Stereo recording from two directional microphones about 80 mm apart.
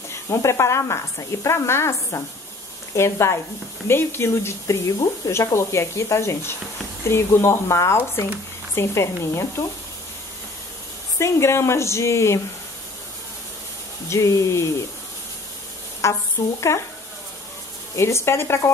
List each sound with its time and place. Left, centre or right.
0.1 s speech: left
11.1 s speech: left
14.0 s speech: left
16.0 s speech: left
17.9 s speech: left